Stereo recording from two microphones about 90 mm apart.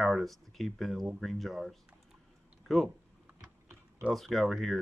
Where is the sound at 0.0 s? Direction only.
Centre (ahead or behind).